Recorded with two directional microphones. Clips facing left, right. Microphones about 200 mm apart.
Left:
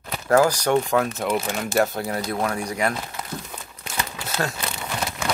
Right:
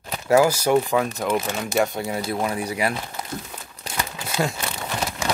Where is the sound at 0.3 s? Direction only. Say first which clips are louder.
Right 1 dB; 10° right (ahead or behind).